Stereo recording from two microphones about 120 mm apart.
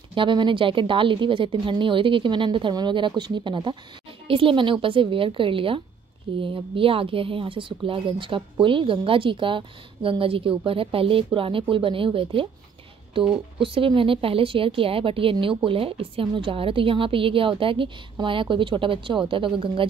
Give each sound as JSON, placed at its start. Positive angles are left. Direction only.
{"t": 0.1, "sound": "speech", "side_deg": -45}